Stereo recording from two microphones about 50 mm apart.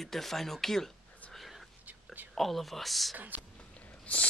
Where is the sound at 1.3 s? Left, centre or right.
Centre.